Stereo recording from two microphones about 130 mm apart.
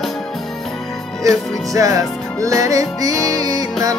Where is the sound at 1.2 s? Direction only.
25° right (ahead or behind).